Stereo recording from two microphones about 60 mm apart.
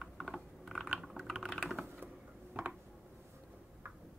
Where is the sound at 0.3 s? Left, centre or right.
Centre.